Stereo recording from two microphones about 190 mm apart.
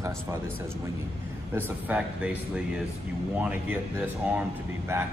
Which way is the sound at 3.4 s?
10° right (ahead or behind).